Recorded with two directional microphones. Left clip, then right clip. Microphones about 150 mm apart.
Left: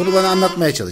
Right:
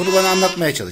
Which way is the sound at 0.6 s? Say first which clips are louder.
Left 2 dB; 30° left (ahead or behind).